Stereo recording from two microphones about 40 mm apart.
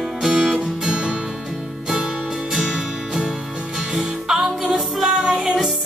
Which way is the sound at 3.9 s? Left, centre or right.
Centre.